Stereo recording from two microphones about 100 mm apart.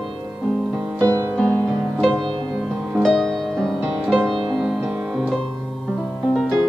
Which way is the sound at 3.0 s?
5° left (ahead or behind).